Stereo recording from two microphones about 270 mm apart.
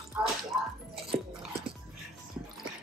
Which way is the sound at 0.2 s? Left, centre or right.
Centre.